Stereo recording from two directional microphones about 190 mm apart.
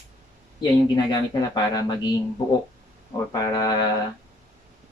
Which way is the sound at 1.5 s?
20° left (ahead or behind).